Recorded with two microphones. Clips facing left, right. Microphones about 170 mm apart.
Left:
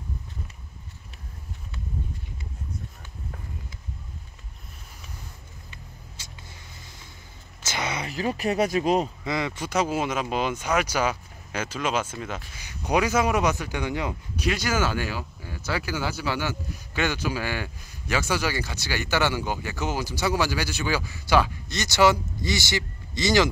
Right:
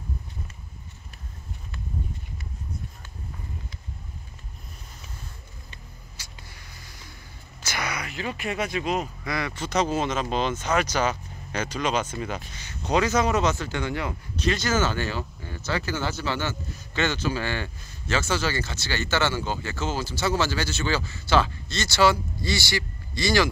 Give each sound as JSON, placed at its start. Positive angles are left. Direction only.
{"t": 6.2, "sound": "vehicle", "side_deg": 25}
{"t": 7.6, "sound": "speech", "side_deg": 25}
{"t": 9.2, "sound": "speech", "side_deg": 20}
{"t": 9.7, "sound": "speech", "side_deg": 10}